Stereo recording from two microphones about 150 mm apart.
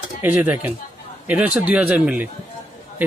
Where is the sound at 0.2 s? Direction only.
10° right (ahead or behind).